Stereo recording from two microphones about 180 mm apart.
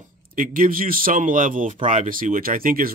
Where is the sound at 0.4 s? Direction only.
50° right (ahead or behind).